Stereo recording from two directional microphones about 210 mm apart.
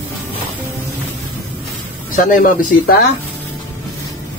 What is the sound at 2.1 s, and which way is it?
Speech, 40° left (ahead or behind).